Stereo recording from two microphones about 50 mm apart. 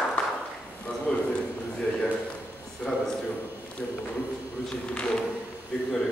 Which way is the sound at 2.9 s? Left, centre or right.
Centre.